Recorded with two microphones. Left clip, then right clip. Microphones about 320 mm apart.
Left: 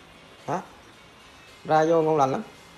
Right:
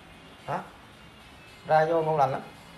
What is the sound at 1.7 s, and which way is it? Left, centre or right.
Speech, left.